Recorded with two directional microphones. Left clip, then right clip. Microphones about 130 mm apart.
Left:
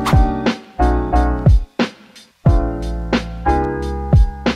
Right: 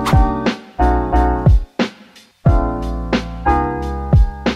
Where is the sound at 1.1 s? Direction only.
20° right (ahead or behind).